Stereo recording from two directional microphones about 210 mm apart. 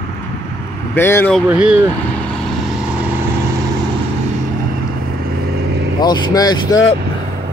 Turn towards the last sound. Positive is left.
turn(degrees=20)  # may be behind; listen again after turning